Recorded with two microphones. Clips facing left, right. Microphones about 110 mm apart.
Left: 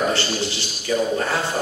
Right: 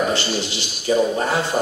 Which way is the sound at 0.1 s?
15° right (ahead or behind).